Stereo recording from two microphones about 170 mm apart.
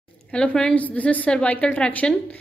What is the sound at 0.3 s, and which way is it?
A woman's voice, 5° left (ahead or behind).